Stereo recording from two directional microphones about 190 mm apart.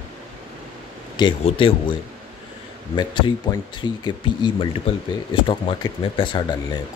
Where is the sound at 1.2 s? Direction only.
25° left (ahead or behind).